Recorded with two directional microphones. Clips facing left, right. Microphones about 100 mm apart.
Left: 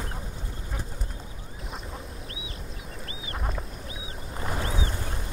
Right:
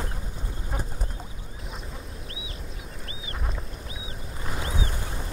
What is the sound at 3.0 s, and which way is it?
Duck, centre (ahead or behind).